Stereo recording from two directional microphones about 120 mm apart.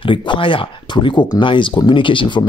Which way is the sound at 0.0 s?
45° left (ahead or behind).